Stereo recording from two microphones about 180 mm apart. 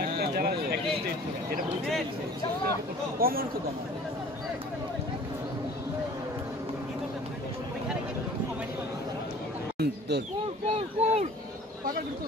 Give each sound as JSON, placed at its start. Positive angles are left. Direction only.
{"t": 0.0, "sound": "a sound", "side_deg": -60}
{"t": 3.2, "sound": "speech", "side_deg": -55}
{"t": 9.8, "sound": "speech", "side_deg": -65}
{"t": 10.7, "sound": "speech", "side_deg": -40}